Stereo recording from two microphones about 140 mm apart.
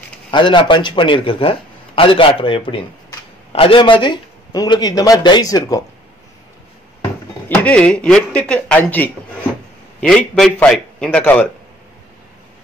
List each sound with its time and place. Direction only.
0.3 s a man's voice: 35° left (ahead or behind)
7.4 s a man's voice: 10° left (ahead or behind)